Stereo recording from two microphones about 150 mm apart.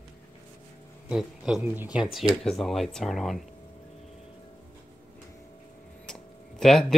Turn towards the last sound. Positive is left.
turn(degrees=5)  # may be behind; listen again after turning